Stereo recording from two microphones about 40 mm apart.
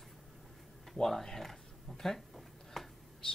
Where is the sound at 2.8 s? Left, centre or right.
Centre.